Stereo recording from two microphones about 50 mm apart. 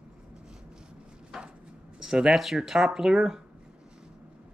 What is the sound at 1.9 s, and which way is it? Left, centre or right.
Speech, centre.